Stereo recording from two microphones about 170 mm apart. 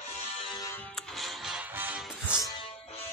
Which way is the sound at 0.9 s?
Centre (ahead or behind).